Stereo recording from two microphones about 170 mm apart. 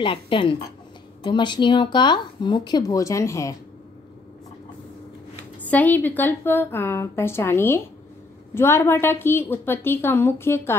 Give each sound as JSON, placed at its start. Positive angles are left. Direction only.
{"t": 0.0, "sound": "speech", "side_deg": 30}
{"t": 5.7, "sound": "a woman's voice", "side_deg": 10}